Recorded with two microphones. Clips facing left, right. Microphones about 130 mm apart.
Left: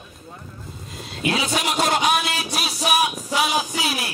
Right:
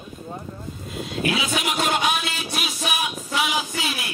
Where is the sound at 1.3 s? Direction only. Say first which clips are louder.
Left 5 dB; 35° left (ahead or behind).